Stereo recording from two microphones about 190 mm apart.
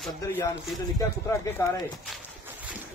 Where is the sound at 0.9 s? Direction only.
15° left (ahead or behind).